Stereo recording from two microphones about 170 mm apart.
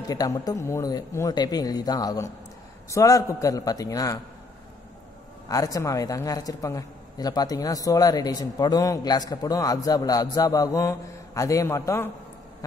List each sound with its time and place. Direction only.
0.1 s a man's voice: 20° left (ahead or behind)
5.5 s a man's voice: 20° left (ahead or behind)